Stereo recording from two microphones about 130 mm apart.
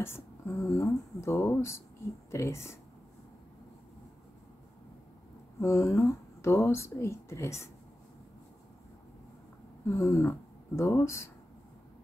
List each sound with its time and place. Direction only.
0.0 s speech: 20° left (ahead or behind)
5.6 s speech: 20° left (ahead or behind)
9.8 s speech: 20° left (ahead or behind)